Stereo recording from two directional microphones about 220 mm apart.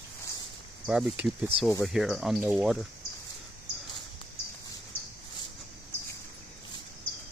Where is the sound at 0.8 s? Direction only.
5° right (ahead or behind).